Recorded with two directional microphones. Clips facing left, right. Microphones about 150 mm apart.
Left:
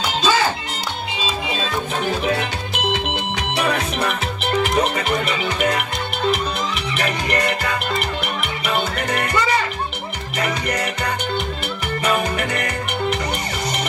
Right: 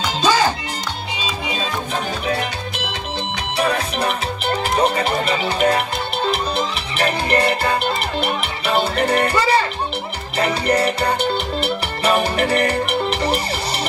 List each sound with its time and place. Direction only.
3.5 s music: 30° right (ahead or behind)
7.0 s music: 30° right (ahead or behind)